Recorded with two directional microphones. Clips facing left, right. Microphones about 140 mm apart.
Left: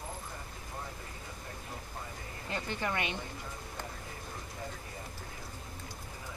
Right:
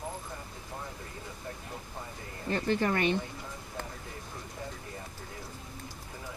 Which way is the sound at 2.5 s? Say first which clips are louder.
Right 7 dB; 45° right (ahead or behind).